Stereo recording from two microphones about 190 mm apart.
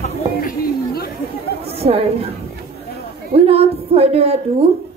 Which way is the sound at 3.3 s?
30° right (ahead or behind).